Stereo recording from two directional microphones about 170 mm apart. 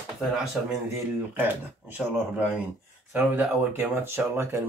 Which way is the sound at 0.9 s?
10° right (ahead or behind).